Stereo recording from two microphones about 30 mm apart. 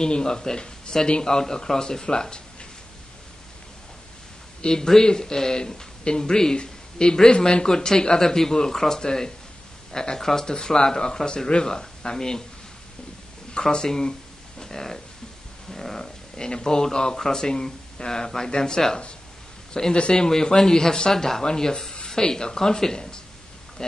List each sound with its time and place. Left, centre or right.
0.0 s speech: left
4.6 s speech: left
13.6 s speech: left; by 16.1 s centre
16.3 s speech: left
19.9 s speech: left